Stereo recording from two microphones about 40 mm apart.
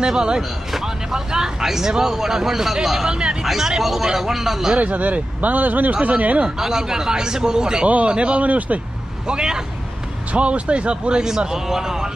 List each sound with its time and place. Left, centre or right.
0.0 s speech: centre
0.4 s speech: centre
3.1 s speech: right
3.4 s speech: centre
4.8 s speech: right
6.6 s speech: centre
8.1 s speech: right
9.3 s speech: right